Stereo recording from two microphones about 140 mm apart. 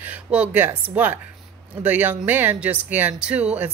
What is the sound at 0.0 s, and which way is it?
Speech, 10° right (ahead or behind).